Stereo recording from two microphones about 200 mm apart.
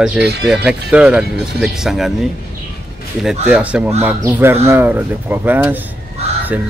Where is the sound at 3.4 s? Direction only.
5° right (ahead or behind).